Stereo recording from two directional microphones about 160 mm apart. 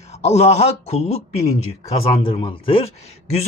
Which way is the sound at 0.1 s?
40° left (ahead or behind).